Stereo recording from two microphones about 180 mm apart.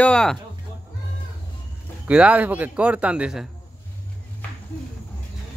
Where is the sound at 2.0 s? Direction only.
5° right (ahead or behind).